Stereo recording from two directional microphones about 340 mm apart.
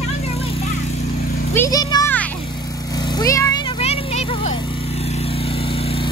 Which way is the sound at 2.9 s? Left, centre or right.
Centre.